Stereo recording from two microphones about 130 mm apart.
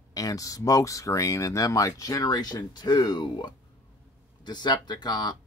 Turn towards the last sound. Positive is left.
turn(degrees=30)  # may be behind; listen again after turning